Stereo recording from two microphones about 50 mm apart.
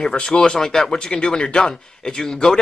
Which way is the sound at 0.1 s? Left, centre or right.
Left.